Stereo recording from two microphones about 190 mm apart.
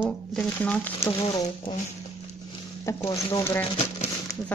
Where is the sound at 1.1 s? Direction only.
25° left (ahead or behind).